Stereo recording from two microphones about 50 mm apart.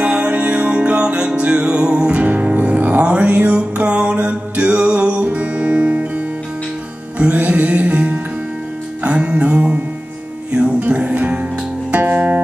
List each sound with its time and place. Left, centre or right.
0.0 s music: right
11.9 s music: right